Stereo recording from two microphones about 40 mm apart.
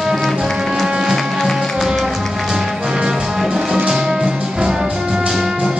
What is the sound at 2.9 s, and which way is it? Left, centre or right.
Music, centre.